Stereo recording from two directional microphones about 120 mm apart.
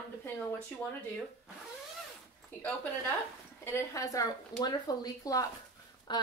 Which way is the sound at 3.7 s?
25° left (ahead or behind).